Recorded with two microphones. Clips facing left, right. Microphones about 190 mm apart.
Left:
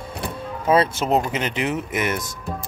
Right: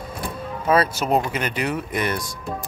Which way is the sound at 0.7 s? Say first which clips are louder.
Left 1 dB; 25° left (ahead or behind).